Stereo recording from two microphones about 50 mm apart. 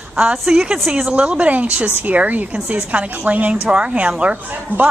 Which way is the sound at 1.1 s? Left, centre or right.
Right.